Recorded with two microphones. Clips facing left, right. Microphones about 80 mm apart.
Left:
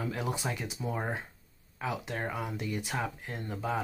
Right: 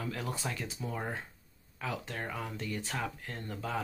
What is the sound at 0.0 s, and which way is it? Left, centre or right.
Speech, centre.